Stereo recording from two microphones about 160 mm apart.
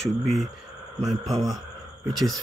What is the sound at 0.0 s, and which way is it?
Speech, centre (ahead or behind).